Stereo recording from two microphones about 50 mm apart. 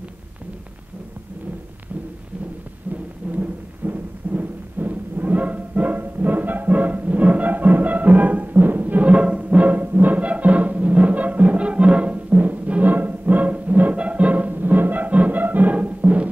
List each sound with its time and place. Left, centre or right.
3.3 s music: right